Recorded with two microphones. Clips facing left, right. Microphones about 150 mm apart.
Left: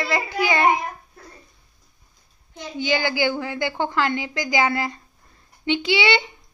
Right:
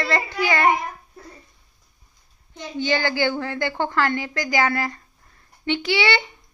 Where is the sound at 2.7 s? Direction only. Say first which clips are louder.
Even; 10° left (ahead or behind).